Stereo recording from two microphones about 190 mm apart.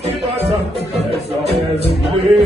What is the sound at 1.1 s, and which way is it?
Music, 30° right (ahead or behind).